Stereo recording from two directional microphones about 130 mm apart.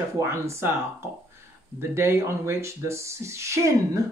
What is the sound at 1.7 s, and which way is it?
Speech, 20° right (ahead or behind).